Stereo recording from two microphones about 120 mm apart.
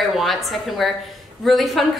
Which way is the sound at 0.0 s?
Centre (ahead or behind).